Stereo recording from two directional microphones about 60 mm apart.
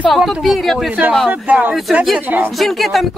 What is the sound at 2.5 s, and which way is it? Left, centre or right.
Speech, centre.